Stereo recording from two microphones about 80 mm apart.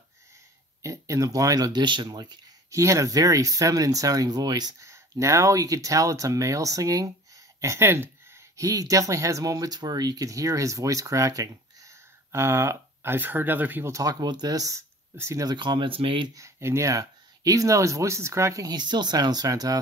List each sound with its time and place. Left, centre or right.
0.8 s speech: right
2.7 s speech: right
4.7 s speech: right
7.8 s a sound: right
8.5 s speech: right
13.8 s speech: right
14.2 s speech: right
15.4 s speech: right
16.3 s speech: right
17.0 s speech: right
18.7 s speech: right